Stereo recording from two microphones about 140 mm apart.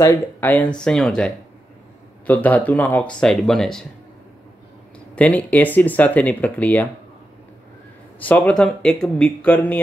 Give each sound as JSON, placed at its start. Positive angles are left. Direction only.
{"t": 0.0, "sound": "speech", "side_deg": 20}
{"t": 0.5, "sound": "speech", "side_deg": 10}
{"t": 5.1, "sound": "speech", "side_deg": 10}
{"t": 8.2, "sound": "speech", "side_deg": 10}